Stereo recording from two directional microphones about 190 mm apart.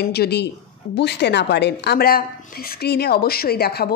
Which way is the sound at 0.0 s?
55° left (ahead or behind).